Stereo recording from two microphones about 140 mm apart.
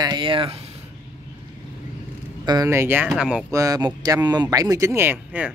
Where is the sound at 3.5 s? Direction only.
25° right (ahead or behind).